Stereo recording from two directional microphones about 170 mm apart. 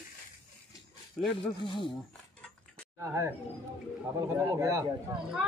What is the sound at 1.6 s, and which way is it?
Speech, 30° left (ahead or behind).